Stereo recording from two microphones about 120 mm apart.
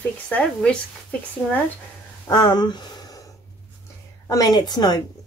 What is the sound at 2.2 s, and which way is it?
Speech, 35° left (ahead or behind).